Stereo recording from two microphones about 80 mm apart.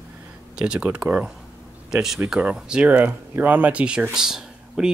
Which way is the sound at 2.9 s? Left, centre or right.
Right.